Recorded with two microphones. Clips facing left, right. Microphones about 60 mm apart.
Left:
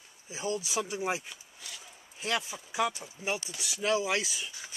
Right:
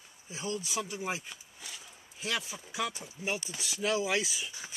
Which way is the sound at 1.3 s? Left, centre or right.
Centre.